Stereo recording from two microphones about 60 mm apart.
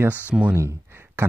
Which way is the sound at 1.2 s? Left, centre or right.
Right.